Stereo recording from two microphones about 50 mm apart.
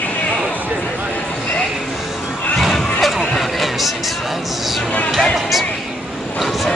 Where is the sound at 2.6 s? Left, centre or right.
Centre.